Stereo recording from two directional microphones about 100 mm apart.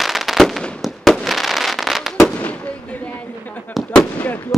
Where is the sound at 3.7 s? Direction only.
10° left (ahead or behind).